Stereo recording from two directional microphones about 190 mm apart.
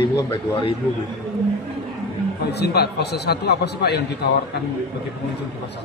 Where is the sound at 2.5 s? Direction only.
60° left (ahead or behind).